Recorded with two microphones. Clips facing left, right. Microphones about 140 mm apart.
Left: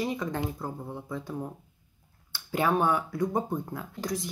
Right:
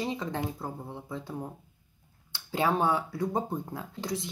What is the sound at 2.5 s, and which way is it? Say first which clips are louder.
Speech: left 1 dB; 25° right (ahead or behind).